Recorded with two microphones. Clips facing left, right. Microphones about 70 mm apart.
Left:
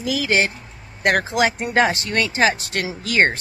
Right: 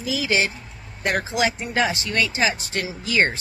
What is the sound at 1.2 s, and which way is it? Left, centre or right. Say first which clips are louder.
Speech: left 3 dB; left.